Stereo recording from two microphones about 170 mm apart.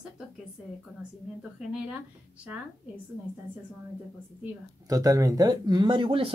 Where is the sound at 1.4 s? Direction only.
5° right (ahead or behind).